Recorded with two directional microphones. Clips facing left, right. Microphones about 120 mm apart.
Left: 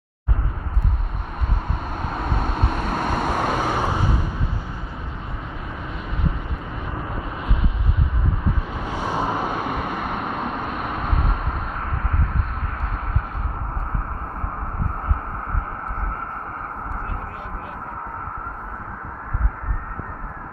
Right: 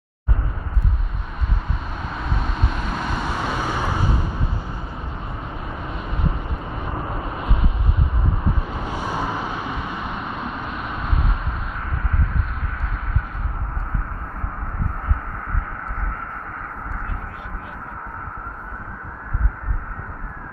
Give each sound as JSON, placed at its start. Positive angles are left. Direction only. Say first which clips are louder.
{"t": 2.0, "sound": "vehicle", "louder": "left 3 dB", "side_deg": 45}
{"t": 8.7, "sound": "a sound", "louder": "even", "side_deg": -5}
{"t": 9.0, "sound": "vehicle", "louder": "left 3 dB", "side_deg": 20}
{"t": 9.3, "sound": "vehicle", "louder": "left 3 dB", "side_deg": 50}